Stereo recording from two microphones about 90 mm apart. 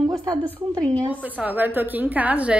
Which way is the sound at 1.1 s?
15° right (ahead or behind).